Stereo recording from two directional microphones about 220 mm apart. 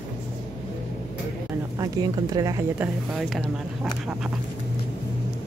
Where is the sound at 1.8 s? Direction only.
15° right (ahead or behind); by 3.4 s centre (ahead or behind).